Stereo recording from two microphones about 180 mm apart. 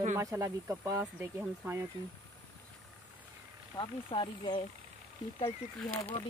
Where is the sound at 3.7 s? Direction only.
25° left (ahead or behind).